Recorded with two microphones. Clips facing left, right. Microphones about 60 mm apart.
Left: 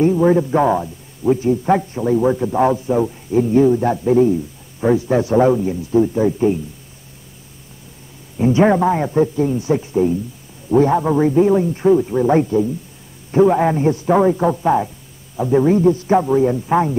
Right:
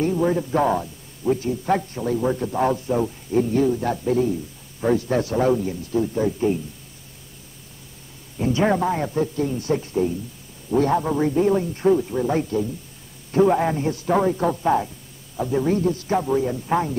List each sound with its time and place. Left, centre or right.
0.2 s a man's voice: left
8.4 s a man's voice: left